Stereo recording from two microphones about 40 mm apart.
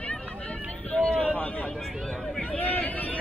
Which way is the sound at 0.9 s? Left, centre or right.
Left.